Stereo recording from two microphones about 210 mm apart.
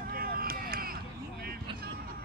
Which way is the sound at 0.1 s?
45° right (ahead or behind).